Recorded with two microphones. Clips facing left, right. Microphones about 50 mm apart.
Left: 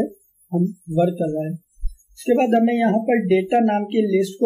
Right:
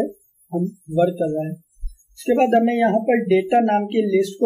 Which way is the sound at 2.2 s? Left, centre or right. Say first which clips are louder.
Even; centre.